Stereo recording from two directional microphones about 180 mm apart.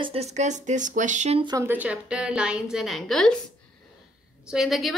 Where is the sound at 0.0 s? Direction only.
35° right (ahead or behind).